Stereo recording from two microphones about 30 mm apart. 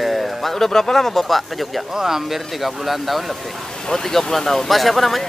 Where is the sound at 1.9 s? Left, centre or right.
Centre.